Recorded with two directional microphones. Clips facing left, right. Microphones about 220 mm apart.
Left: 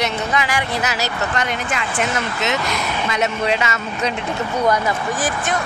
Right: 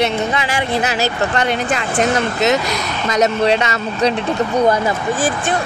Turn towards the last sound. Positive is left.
turn(degrees=-25)  # may be behind; listen again after turning